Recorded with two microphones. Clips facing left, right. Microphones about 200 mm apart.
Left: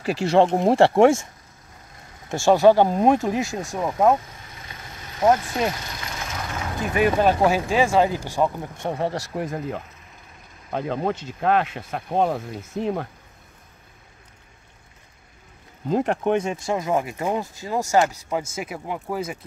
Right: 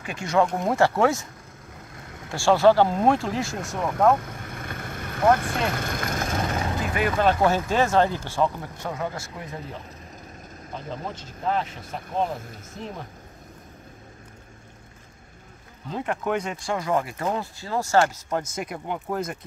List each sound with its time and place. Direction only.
0.0 s speech: 35° left (ahead or behind)
2.3 s speech: 20° left (ahead or behind)
4.2 s vehicle: 60° right (ahead or behind)
6.9 s speech: 20° left (ahead or behind)
8.9 s speech: 35° left (ahead or behind)
10.7 s speech: 65° left (ahead or behind)
16.1 s speech: 25° left (ahead or behind); by 19.3 s 5° left (ahead or behind)